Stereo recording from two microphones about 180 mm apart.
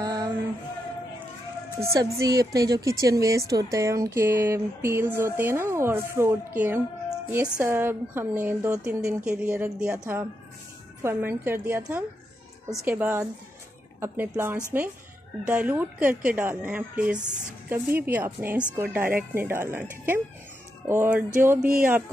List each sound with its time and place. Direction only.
0.0 s music: 20° right (ahead or behind)
1.8 s a woman's voice: 15° right (ahead or behind)